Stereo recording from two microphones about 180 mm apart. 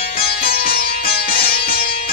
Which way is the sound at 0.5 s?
55° left (ahead or behind).